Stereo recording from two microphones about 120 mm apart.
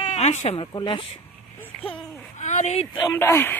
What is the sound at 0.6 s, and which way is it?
Speech, 45° left (ahead or behind).